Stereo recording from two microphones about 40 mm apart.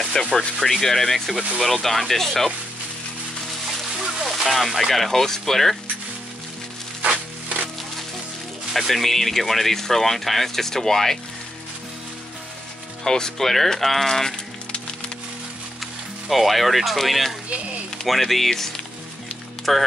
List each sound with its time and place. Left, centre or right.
0.1 s speech: centre
4.0 s music: centre
4.6 s speech: centre
8.7 s speech: centre
13.0 s speech: centre
15.8 s speech: centre